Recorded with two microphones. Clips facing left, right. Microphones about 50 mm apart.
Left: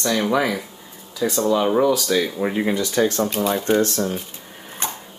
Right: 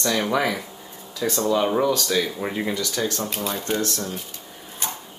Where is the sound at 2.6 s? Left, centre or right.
Left.